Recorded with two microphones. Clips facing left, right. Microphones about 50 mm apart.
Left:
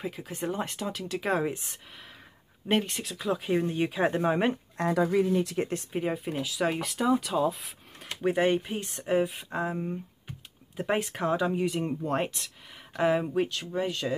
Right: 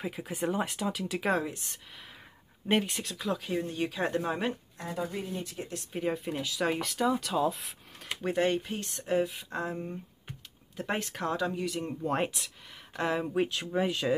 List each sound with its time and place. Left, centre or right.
0.0 s speech: centre
1.4 s speech: left
2.7 s speech: centre
3.4 s speech: left
4.7 s speech: left
5.9 s speech: centre
8.2 s speech: centre
12.0 s speech: centre